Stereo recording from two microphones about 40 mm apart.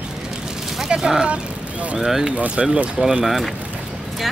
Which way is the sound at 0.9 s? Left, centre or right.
Centre.